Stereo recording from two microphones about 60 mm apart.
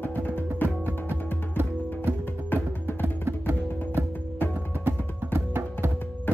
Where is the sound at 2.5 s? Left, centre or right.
Left.